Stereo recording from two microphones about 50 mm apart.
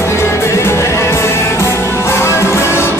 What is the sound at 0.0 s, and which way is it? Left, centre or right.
Music, left.